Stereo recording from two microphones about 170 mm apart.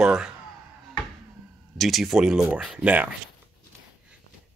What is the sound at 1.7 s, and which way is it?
Speech, centre (ahead or behind).